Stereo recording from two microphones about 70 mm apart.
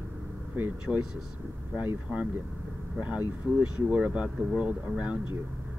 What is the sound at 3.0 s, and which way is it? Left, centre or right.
Speech, right.